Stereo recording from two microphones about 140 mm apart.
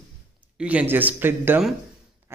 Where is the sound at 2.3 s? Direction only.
15° right (ahead or behind).